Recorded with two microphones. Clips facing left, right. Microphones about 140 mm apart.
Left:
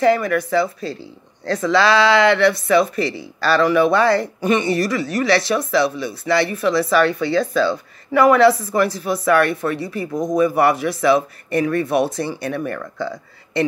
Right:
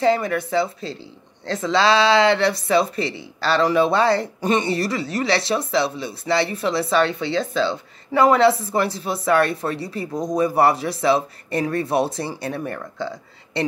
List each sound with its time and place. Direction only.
0.0 s speech: 25° right (ahead or behind)